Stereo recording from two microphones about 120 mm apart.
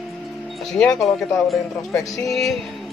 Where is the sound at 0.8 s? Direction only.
Centre (ahead or behind).